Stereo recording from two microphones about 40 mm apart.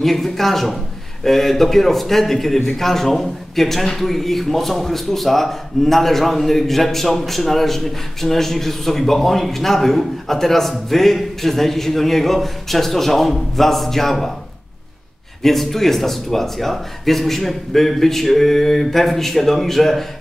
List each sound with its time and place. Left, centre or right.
0.0 s a man's voice: centre
15.4 s a man's voice: centre